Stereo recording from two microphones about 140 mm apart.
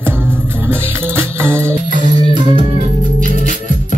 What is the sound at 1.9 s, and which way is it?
Music, 70° right (ahead or behind).